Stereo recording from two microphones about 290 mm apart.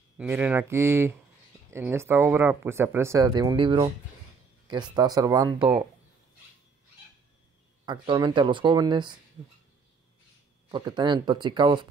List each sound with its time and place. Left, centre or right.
0.2 s speech: centre
7.8 s speech: centre
10.7 s speech: centre